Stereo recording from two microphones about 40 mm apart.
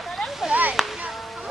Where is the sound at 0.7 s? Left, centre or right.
Centre.